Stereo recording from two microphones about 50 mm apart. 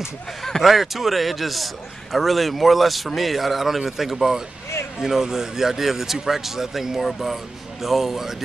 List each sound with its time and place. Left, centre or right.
0.4 s speech: centre